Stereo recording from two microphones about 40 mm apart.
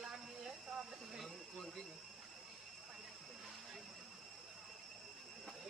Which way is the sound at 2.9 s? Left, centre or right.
Centre.